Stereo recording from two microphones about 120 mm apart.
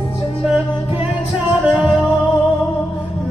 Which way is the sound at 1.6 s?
Centre (ahead or behind).